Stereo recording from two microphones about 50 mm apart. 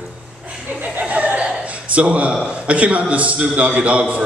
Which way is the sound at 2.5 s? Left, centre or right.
Right.